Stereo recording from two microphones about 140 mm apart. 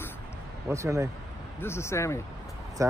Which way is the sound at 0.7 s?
20° right (ahead or behind).